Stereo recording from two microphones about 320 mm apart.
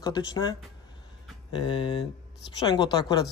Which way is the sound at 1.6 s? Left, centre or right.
Centre.